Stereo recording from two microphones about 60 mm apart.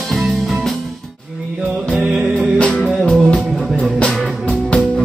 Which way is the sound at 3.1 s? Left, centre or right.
Centre.